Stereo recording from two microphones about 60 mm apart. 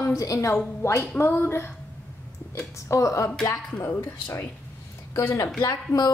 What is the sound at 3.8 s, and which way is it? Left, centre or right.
Speech, left.